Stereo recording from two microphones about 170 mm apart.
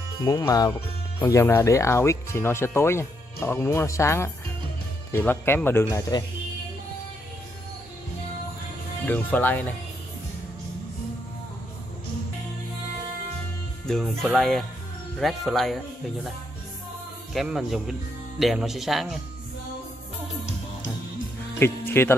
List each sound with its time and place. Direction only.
0.2 s speech: 20° left (ahead or behind)
9.0 s speech: 10° left (ahead or behind)
13.8 s speech: centre (ahead or behind)
17.3 s speech: centre (ahead or behind)
21.5 s speech: 15° left (ahead or behind)